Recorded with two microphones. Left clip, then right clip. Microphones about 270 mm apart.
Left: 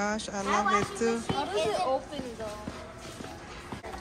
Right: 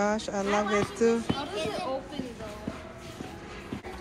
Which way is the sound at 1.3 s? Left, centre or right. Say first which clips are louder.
Left 4 dB; left.